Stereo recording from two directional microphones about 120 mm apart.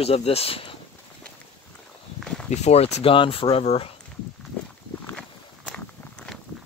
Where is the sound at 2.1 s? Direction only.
5° left (ahead or behind).